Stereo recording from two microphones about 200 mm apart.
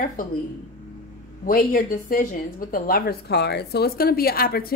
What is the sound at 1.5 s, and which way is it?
A woman's voice, 45° left (ahead or behind).